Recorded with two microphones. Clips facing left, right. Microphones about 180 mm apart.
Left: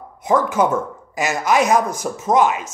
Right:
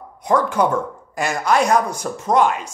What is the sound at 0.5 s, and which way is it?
A man's voice, 5° left (ahead or behind).